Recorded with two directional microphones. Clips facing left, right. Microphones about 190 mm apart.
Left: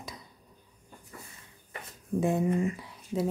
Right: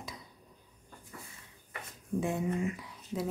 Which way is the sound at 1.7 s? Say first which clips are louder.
Left 3 dB; 35° left (ahead or behind).